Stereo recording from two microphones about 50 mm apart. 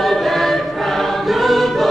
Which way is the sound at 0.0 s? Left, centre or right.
Centre.